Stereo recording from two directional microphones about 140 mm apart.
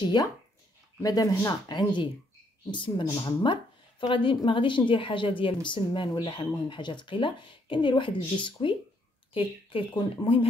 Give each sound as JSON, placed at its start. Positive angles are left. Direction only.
{"t": 0.0, "sound": "a woman's voice", "side_deg": 30}